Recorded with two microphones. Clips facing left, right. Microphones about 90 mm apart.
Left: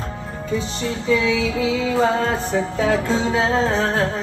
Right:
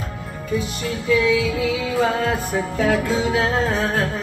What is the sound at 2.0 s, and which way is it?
Music, 35° left (ahead or behind).